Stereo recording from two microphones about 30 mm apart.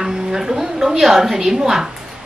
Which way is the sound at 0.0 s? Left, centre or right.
Centre.